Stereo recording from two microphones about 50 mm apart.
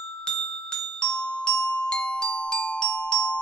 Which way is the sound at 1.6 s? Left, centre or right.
Left.